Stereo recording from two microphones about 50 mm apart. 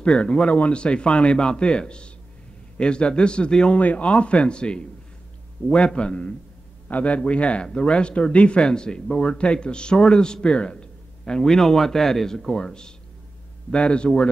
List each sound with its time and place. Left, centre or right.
0.0 s speech: centre
3.7 s speech: left
5.9 s a man's voice: left